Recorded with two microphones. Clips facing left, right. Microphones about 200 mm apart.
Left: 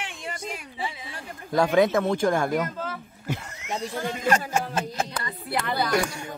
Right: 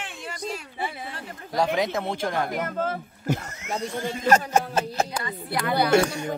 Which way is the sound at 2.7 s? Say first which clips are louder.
Right 5 dB; 45° right (ahead or behind).